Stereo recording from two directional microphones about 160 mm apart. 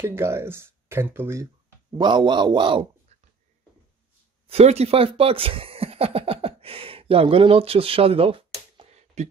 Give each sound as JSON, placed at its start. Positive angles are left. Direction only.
{"t": 0.0, "sound": "speech", "side_deg": -15}
{"t": 4.5, "sound": "speech", "side_deg": -40}